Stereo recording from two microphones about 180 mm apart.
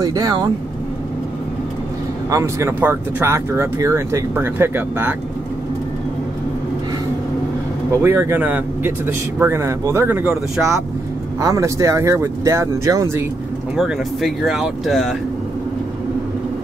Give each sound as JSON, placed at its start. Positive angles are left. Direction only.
{"t": 0.0, "sound": "speech", "side_deg": -20}
{"t": 2.3, "sound": "speech", "side_deg": -15}
{"t": 8.0, "sound": "speech", "side_deg": -15}
{"t": 13.7, "sound": "speech", "side_deg": 0}